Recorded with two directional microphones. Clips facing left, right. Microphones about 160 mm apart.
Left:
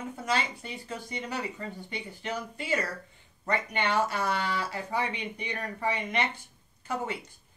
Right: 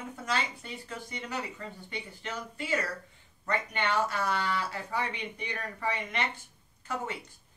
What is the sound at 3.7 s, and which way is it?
Speech, 20° left (ahead or behind).